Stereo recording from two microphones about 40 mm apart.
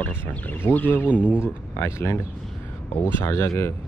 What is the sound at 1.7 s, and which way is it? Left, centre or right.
Speech, left.